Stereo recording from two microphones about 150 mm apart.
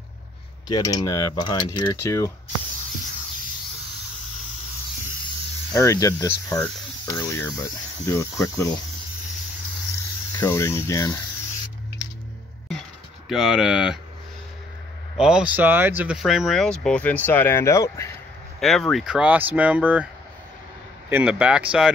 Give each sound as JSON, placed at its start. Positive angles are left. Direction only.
{"t": 0.7, "sound": "speech", "side_deg": 25}
{"t": 5.8, "sound": "speech", "side_deg": 20}
{"t": 10.4, "sound": "speech", "side_deg": 15}
{"t": 13.3, "sound": "speech", "side_deg": 0}
{"t": 15.1, "sound": "speech", "side_deg": -5}
{"t": 18.6, "sound": "speech", "side_deg": 0}
{"t": 21.1, "sound": "speech", "side_deg": -10}